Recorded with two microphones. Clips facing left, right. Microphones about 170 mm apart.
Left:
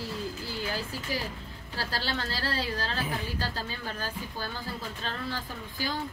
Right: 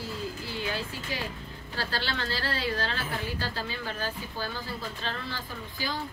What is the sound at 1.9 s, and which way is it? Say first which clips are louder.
A woman's voice: even; 35° left (ahead or behind).